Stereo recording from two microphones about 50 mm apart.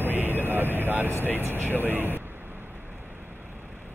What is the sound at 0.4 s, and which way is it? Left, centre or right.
Vehicle, right.